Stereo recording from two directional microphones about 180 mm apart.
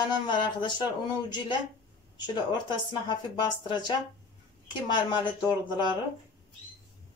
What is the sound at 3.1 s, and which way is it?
Speech, 25° left (ahead or behind).